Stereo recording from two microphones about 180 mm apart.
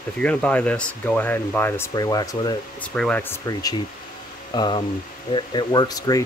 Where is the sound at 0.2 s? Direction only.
5° left (ahead or behind).